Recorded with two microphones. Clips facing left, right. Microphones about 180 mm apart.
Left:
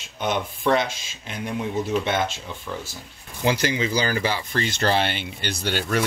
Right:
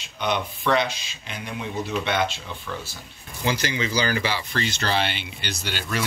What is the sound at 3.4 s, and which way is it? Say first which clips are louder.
Speech: left 3 dB; 50° left (ahead or behind).